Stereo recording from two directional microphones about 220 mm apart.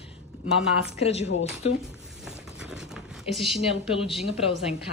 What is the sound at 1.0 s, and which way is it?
Speech, 30° left (ahead or behind).